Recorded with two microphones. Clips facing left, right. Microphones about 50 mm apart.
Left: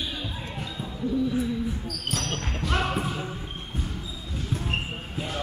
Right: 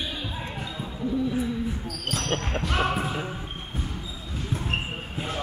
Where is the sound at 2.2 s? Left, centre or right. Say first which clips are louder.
Right 3 dB; right.